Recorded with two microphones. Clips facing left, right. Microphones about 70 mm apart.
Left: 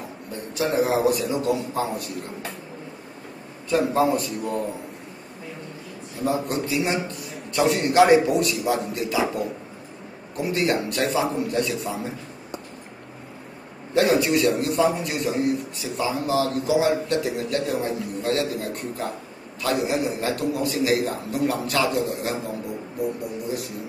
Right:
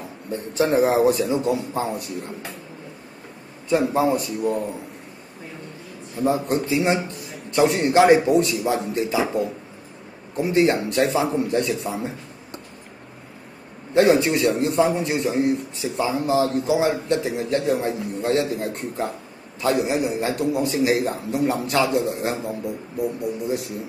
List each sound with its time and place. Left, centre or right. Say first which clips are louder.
0.3 s a man's voice: right 5 dB; right
3.6 s a man's voice: right 1 dB; right
6.2 s a man's voice: right 3 dB; right
10.3 s a man's voice: right 4 dB; right
13.9 s a man's voice: right 3 dB; right